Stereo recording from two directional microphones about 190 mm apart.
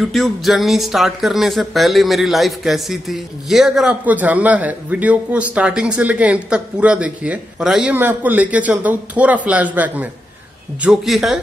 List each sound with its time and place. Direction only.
0.0 s speech: centre (ahead or behind)